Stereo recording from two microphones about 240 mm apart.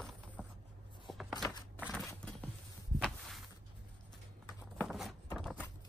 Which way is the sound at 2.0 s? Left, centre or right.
Centre.